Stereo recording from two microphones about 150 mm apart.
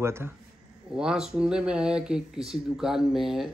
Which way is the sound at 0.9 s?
5° right (ahead or behind).